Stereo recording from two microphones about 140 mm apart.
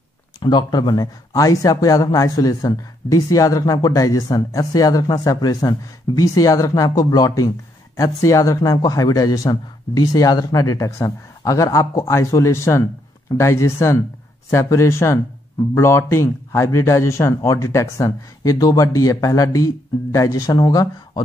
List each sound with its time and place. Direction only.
0.4 s speech: 30° left (ahead or behind)